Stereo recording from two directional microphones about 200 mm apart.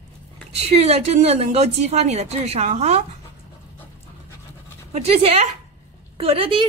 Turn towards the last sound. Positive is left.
turn(degrees=-25)  # may be behind; listen again after turning